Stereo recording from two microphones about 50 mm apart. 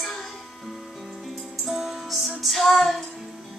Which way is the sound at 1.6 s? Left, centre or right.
Centre.